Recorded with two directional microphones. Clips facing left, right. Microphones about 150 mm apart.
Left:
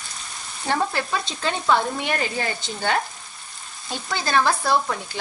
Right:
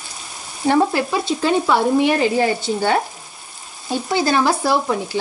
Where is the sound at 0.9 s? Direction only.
15° right (ahead or behind).